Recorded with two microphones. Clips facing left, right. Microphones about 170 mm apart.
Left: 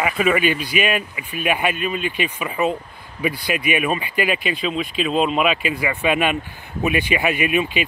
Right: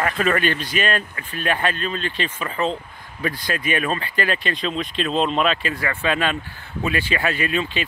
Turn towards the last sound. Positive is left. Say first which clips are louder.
# left 3 dB
turn(degrees=15)  # may be behind; listen again after turning